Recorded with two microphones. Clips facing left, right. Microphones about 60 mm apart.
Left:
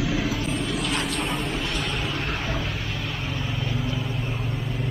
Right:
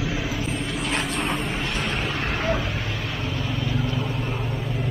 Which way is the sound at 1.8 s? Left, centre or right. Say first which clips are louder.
Right 2 dB; right.